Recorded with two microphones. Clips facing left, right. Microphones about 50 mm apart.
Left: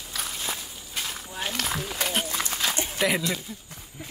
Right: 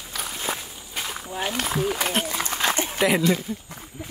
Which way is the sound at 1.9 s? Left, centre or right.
Right.